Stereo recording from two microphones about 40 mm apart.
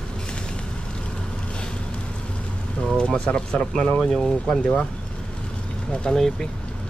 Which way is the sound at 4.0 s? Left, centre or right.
Centre.